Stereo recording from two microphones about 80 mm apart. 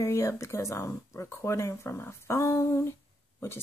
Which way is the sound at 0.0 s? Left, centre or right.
Left.